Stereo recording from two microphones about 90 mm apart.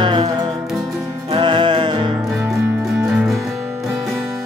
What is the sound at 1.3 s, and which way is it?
Music, 60° right (ahead or behind).